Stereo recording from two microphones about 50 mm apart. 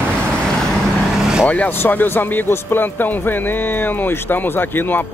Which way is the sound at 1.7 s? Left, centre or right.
Left.